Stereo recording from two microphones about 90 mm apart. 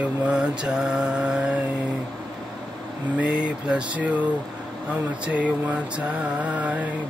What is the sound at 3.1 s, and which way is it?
Mantra, 15° right (ahead or behind).